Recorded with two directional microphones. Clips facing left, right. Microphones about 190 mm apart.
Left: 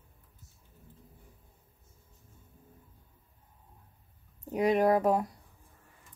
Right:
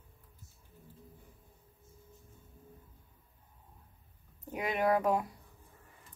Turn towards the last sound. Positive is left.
turn(degrees=40)  # may be behind; listen again after turning